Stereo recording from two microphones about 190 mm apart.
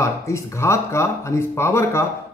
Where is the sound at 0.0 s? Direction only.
15° left (ahead or behind).